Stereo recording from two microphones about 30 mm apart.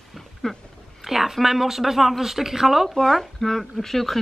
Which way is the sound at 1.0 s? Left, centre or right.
Centre.